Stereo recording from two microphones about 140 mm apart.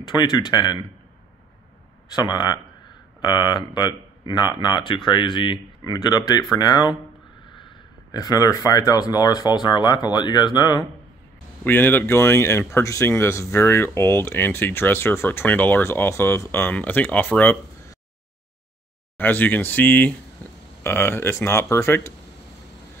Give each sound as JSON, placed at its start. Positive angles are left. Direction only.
{"t": 0.0, "sound": "speech", "side_deg": 30}
{"t": 2.1, "sound": "speech", "side_deg": 30}
{"t": 11.6, "sound": "speech", "side_deg": 15}
{"t": 19.1, "sound": "speech", "side_deg": 15}